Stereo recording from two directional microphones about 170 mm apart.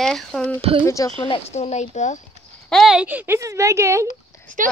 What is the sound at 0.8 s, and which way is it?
Speech, 20° left (ahead or behind).